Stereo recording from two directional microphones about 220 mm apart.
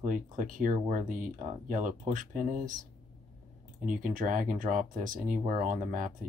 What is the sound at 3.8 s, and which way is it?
Speech, 35° right (ahead or behind).